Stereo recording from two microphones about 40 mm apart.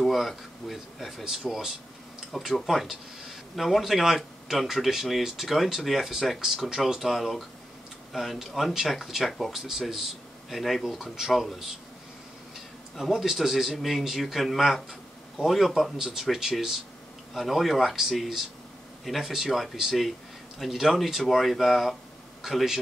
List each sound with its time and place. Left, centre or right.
0.0 s a man's voice: centre
12.9 s a man's voice: centre